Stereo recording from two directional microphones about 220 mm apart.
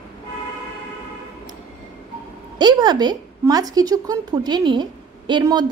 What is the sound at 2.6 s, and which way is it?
Speech, 20° right (ahead or behind).